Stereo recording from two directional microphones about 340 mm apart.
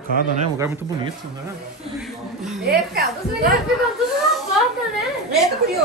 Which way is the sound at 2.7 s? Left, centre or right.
Right.